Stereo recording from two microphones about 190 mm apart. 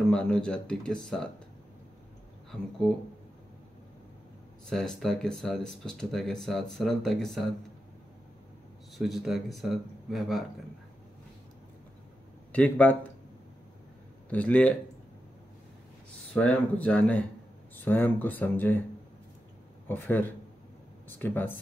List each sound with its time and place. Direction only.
0.1 s speech: 5° left (ahead or behind)
4.6 s speech: 5° left (ahead or behind)
8.9 s speech: centre (ahead or behind)
12.5 s speech: 10° left (ahead or behind)
14.3 s speech: 5° left (ahead or behind)
16.3 s speech: 5° left (ahead or behind)
19.9 s speech: 10° left (ahead or behind)